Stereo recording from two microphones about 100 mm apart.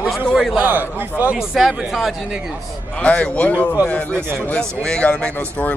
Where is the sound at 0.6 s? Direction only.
15° right (ahead or behind).